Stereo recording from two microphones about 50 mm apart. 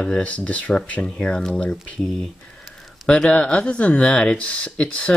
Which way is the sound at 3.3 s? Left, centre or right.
Left.